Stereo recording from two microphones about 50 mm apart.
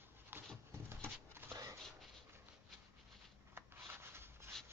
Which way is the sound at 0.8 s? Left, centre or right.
Right.